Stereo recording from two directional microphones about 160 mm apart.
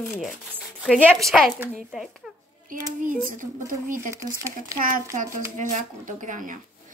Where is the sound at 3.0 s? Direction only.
60° right (ahead or behind).